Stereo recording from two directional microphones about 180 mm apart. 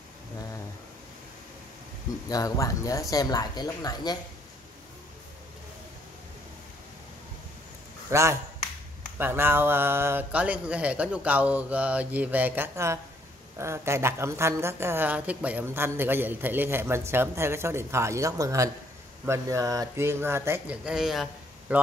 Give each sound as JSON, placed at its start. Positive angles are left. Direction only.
{"t": 2.2, "sound": "speech", "side_deg": 20}
{"t": 8.1, "sound": "a woman's voice", "side_deg": -15}